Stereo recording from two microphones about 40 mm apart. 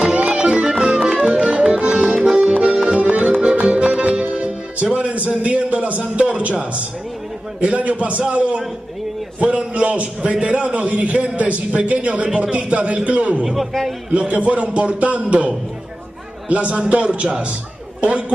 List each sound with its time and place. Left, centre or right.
0.0 s music: right
1.2 s music: right
1.9 s accordion: right
2.1 s accordion: centre
3.0 s accordion: right
3.6 s music: right
4.9 s a sound: right
7.6 s a man's voice: right
13.5 s a man's voice: centre
14.1 s a man's voice: right